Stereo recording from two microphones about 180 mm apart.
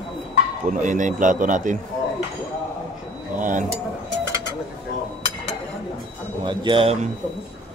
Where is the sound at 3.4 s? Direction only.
45° right (ahead or behind).